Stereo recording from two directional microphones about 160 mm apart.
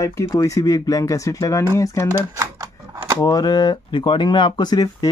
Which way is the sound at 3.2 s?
25° left (ahead or behind).